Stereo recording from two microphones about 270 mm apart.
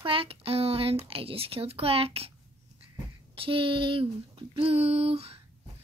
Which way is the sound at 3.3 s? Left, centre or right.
Centre.